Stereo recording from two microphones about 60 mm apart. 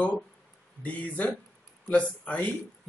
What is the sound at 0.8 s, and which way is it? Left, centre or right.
Speech, left.